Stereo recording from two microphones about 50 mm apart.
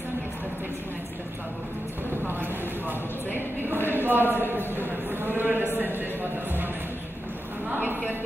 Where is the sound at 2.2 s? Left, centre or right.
Right.